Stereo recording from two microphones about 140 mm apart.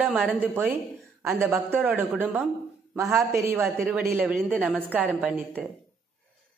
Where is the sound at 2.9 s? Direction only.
20° right (ahead or behind).